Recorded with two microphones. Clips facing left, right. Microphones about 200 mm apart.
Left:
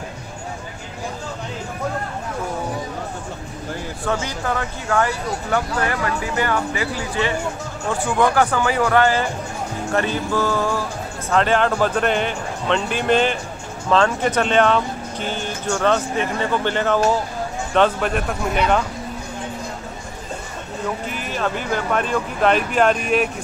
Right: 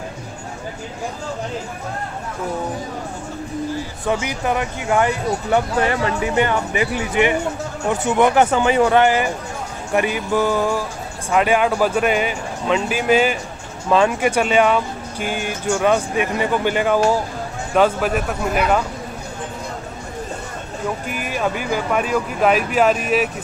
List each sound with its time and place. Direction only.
4.0 s speech: 15° right (ahead or behind)
21.1 s speech: 10° right (ahead or behind)